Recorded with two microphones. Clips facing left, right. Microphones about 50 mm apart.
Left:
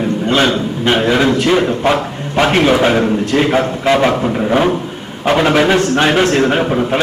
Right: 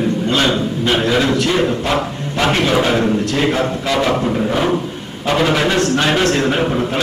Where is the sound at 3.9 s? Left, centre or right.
Left.